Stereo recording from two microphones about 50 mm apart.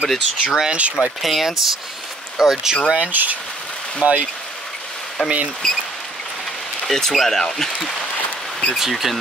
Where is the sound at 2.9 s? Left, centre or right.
Right.